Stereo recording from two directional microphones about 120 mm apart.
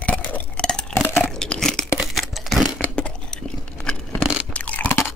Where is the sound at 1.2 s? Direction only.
5° left (ahead or behind).